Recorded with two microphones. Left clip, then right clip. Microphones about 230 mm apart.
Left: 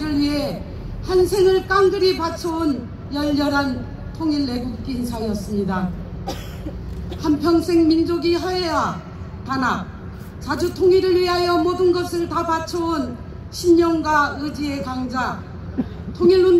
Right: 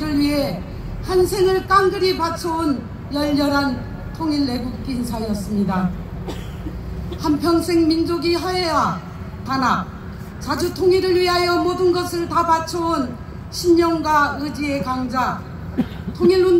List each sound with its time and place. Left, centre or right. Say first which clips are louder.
0.0 s a sound: right 2 dB; right
1.0 s a man's voice: left 1 dB; right
7.2 s a man's voice: even; right